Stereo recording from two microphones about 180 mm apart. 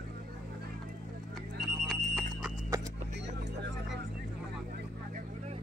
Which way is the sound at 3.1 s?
75° right (ahead or behind).